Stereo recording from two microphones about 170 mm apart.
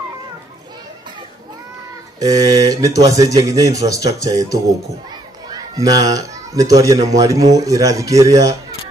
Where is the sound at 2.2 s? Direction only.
20° right (ahead or behind).